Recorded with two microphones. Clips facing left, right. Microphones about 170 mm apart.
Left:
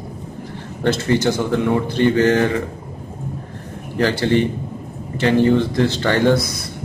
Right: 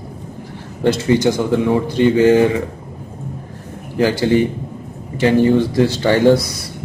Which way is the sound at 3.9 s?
15° right (ahead or behind).